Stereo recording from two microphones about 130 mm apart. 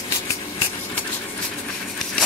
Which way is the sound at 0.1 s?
20° left (ahead or behind).